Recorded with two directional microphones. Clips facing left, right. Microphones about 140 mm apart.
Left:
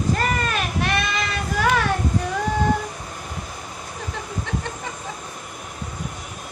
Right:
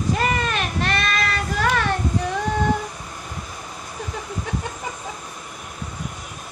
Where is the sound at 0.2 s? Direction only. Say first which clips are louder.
Right 1 dB; centre (ahead or behind).